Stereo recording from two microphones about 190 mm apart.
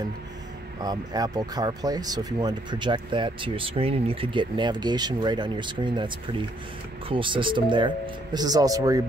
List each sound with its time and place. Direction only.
0.7 s speech: 20° right (ahead or behind)